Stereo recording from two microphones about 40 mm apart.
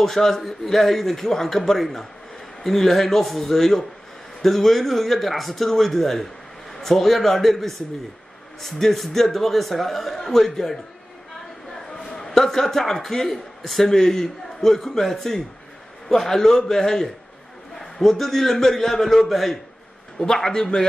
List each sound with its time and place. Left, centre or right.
0.0 s a man's voice: centre
12.1 s a man's voice: centre
20.2 s a man's voice: centre